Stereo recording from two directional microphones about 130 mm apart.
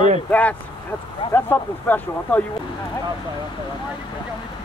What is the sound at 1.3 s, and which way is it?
Speech, 15° left (ahead or behind).